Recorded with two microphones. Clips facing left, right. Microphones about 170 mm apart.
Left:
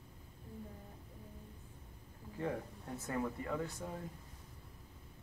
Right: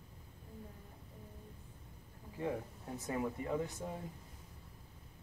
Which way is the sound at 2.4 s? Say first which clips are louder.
Right 1 dB; 15° right (ahead or behind).